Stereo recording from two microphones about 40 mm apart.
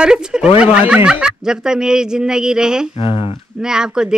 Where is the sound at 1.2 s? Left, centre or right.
Centre.